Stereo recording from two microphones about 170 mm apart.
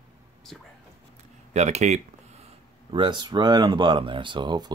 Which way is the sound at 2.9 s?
25° right (ahead or behind).